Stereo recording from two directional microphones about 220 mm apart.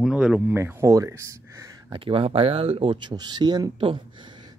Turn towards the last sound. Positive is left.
turn(degrees=-20)  # may be behind; listen again after turning